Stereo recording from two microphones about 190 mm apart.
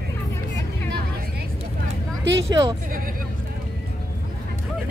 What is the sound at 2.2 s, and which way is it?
Speech, 70° right (ahead or behind).